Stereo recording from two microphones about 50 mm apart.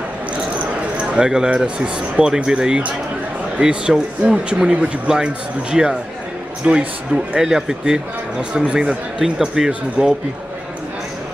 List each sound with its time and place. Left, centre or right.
1.1 s speech: centre
7.1 s speech: centre
9.2 s speech: centre